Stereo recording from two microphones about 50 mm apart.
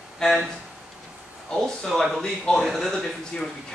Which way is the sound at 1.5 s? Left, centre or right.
Centre.